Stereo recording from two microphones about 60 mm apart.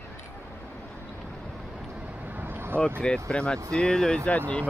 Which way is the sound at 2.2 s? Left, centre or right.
Right.